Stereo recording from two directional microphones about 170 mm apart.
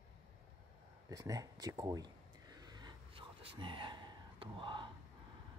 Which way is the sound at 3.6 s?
30° right (ahead or behind).